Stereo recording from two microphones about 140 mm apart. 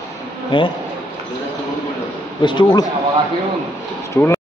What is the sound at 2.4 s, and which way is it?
Speech, 35° left (ahead or behind).